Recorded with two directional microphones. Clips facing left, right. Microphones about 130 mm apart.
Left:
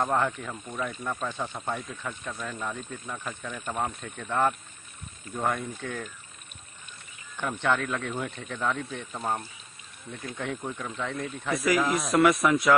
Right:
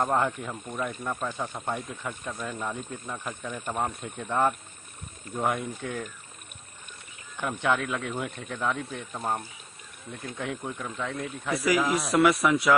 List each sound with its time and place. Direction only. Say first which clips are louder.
0.1 s speech: right 1 dB; 15° right (ahead or behind)
7.3 s speech: even; 10° right (ahead or behind)
9.2 s speech: even; 15° right (ahead or behind)